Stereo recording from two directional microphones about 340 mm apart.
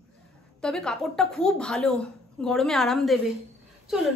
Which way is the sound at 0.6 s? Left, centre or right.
Centre.